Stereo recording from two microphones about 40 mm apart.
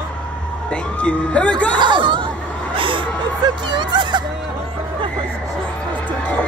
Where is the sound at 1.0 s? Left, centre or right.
Left.